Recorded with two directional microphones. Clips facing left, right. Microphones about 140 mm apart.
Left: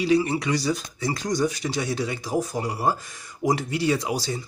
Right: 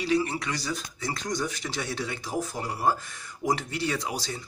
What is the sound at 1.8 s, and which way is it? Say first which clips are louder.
Speech: left 5 dB; 5° left (ahead or behind).